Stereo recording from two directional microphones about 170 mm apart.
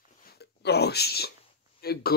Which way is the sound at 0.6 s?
75° left (ahead or behind).